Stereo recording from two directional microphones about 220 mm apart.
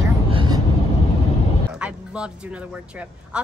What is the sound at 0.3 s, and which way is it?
Vehicle, 20° right (ahead or behind).